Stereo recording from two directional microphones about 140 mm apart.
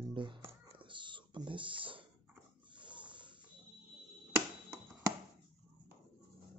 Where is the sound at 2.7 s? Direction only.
35° right (ahead or behind).